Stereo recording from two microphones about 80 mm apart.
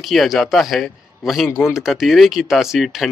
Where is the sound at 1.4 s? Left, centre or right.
Left.